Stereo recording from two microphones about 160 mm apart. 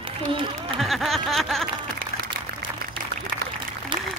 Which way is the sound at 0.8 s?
Centre (ahead or behind).